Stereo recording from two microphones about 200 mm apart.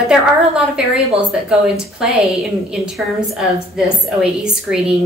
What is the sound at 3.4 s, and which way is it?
A woman's voice, 5° right (ahead or behind).